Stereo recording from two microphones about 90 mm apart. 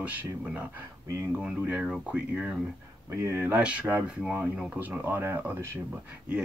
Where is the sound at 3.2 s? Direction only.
25° right (ahead or behind).